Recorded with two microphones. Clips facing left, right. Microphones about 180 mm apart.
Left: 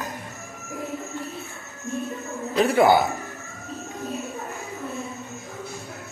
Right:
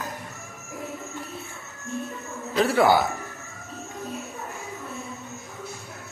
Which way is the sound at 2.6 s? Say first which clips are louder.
Left 2 dB; 15° left (ahead or behind).